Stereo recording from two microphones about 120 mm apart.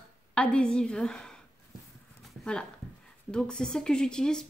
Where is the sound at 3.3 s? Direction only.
5° left (ahead or behind).